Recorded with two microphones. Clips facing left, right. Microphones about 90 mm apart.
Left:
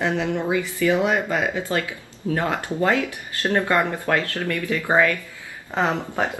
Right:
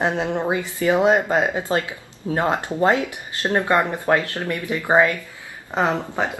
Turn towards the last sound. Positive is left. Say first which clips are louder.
# right 1 dB
turn(degrees=-20)  # may be behind; listen again after turning